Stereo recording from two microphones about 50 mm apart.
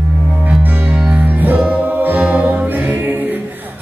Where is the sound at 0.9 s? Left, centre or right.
Right.